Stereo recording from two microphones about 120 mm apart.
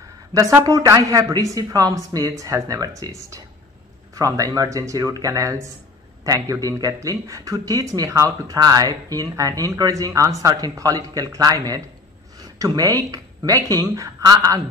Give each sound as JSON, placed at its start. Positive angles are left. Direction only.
{"t": 0.3, "sound": "speech", "side_deg": -25}